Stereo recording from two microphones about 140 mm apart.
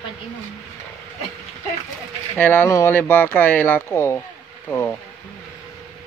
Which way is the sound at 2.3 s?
15° left (ahead or behind).